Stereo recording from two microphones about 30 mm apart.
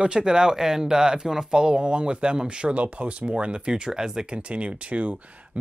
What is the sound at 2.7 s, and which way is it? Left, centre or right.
Speech, right.